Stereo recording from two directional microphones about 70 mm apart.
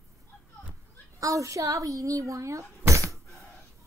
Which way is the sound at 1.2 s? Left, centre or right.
Right.